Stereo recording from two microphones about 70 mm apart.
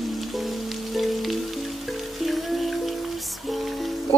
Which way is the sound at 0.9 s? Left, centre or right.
Centre.